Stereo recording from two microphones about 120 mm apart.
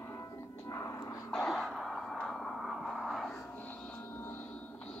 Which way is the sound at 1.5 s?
Centre (ahead or behind).